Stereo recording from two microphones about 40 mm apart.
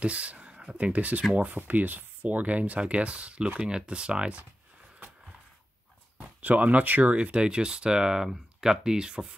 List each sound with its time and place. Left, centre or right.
0.0 s a sound: right
0.7 s speech: right
6.1 s speech: right